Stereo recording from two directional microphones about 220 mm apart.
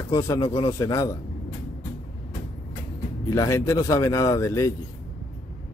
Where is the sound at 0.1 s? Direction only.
15° left (ahead or behind).